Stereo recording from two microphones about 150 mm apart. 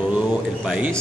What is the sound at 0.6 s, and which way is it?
Speech, 5° right (ahead or behind).